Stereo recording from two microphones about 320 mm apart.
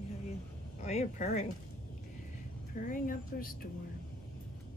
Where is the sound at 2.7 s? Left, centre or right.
Left.